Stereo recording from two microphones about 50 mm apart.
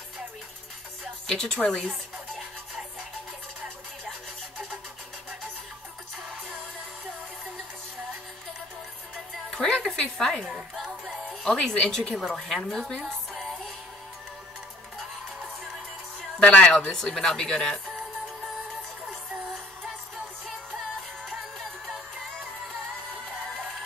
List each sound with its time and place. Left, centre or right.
1.2 s a woman's voice: centre
9.6 s music: centre
10.1 s speech: centre
10.4 s a sound: centre
11.2 s speech: centre
13.0 s music: centre
16.3 s speech: centre